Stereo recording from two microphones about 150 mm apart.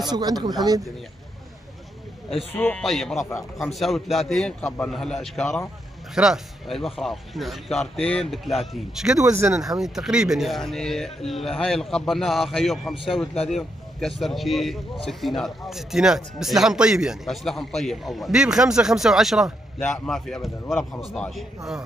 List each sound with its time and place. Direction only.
0.1 s speech: 25° right (ahead or behind)
2.5 s a man's voice: 10° left (ahead or behind)
9.2 s speech: 20° right (ahead or behind)
9.6 s speech: centre (ahead or behind)